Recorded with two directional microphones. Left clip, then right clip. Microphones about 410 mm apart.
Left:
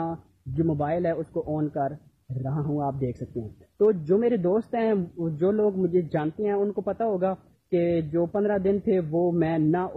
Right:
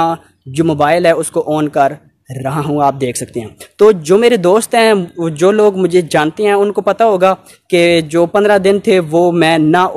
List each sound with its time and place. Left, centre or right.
0.7 s speech: right